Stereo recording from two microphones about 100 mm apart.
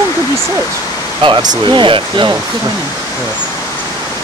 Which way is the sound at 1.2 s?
55° right (ahead or behind).